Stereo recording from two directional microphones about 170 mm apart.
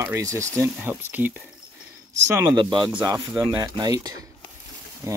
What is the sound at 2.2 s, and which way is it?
Speech, 20° right (ahead or behind).